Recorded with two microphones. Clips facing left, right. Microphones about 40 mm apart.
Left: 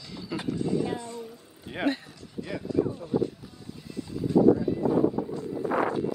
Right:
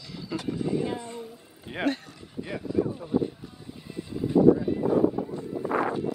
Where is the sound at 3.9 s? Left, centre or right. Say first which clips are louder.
Even; right.